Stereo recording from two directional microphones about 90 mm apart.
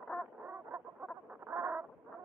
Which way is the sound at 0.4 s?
25° right (ahead or behind).